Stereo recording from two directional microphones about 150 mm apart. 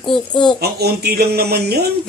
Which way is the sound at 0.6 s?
90° right.